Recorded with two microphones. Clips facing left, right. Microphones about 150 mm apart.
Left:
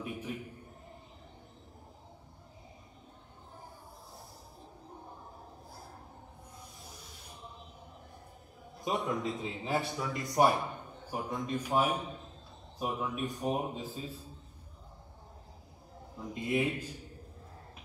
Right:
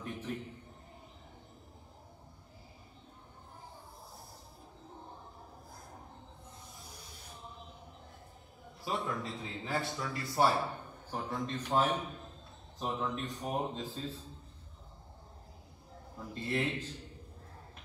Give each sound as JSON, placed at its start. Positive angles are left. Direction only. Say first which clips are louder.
{"t": 0.0, "sound": "a sound", "louder": "left 1 dB", "side_deg": 10}
{"t": 8.8, "sound": "a man's voice", "louder": "left 4 dB", "side_deg": 20}
{"t": 16.3, "sound": "a man's voice", "louder": "left 3 dB", "side_deg": 15}